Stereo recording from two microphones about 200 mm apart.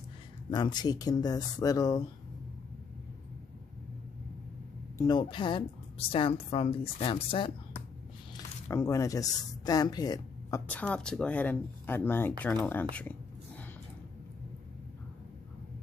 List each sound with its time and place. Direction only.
0.5 s a woman's voice: 20° left (ahead or behind)
4.9 s a woman's voice: 20° left (ahead or behind)
8.6 s speech: 15° left (ahead or behind)
10.7 s speech: 5° left (ahead or behind)